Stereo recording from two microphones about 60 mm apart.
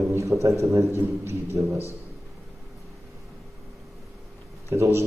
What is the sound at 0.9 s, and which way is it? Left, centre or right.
Speech, right.